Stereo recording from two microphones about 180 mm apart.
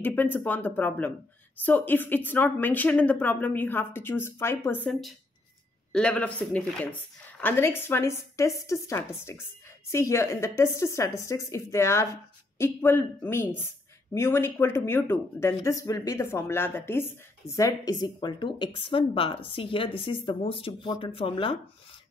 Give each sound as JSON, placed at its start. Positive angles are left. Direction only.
{"t": 0.0, "sound": "a woman's voice", "side_deg": 10}